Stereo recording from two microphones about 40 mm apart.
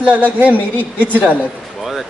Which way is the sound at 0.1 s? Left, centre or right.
Right.